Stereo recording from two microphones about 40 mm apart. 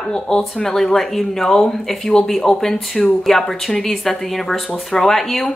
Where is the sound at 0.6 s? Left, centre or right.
Centre.